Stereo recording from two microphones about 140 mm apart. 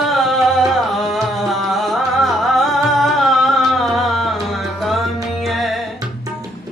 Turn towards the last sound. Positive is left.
turn(degrees=0)  # may be behind; listen again after turning